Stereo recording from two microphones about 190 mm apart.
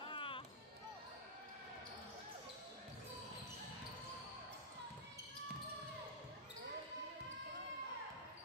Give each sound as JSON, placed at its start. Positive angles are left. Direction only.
{"t": 0.0, "sound": "music", "side_deg": 25}